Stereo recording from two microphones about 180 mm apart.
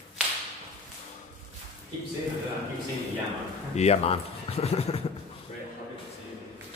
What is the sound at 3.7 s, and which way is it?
Speech, 35° left (ahead or behind).